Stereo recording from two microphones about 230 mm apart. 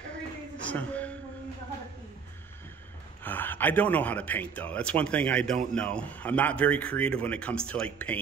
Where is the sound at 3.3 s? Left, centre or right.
Centre.